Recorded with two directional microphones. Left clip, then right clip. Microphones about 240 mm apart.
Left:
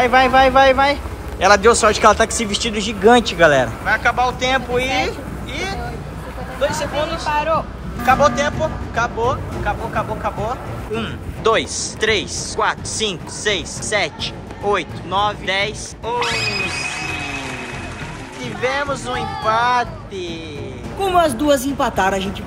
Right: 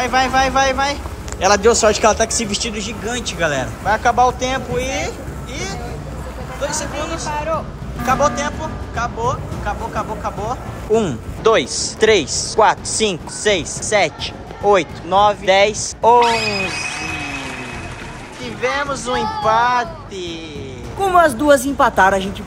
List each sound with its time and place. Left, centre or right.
0.0 s speech: centre
3.8 s speech: centre
6.6 s speech: centre
7.3 s speech: left
8.0 s speech: centre
16.2 s speech: centre
18.4 s speech: centre